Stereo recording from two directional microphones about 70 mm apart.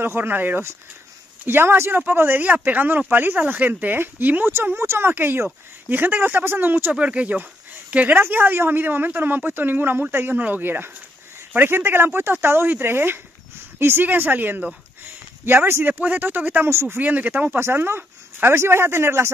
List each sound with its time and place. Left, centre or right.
0.0 s speech: right
17.6 s speech: right